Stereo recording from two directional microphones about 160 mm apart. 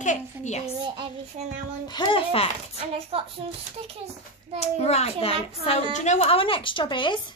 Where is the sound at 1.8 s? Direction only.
25° left (ahead or behind).